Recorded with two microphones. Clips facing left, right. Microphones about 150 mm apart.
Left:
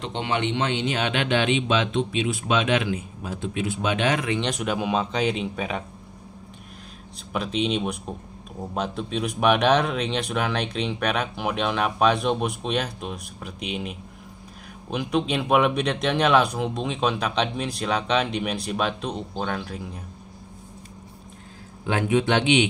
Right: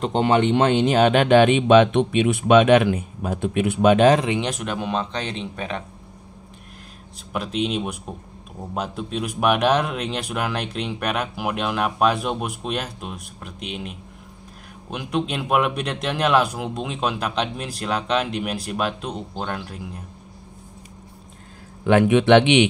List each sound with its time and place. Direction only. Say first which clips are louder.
0.0 s speech: right 8 dB; 45° right (ahead or behind)
4.4 s speech: even; 5° right (ahead or behind)
7.3 s speech: even; centre (ahead or behind)
21.8 s speech: right 7 dB; 65° right (ahead or behind)